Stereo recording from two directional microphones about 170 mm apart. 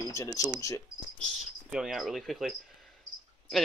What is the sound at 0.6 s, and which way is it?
Cricket, 20° left (ahead or behind).